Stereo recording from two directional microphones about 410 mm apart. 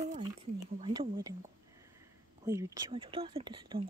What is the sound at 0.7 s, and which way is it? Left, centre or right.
Speech, centre.